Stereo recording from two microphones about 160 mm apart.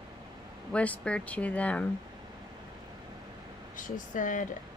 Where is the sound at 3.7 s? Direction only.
55° left (ahead or behind).